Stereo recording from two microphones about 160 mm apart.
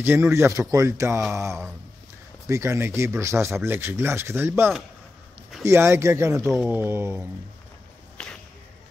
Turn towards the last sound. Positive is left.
turn(degrees=-15)  # may be behind; listen again after turning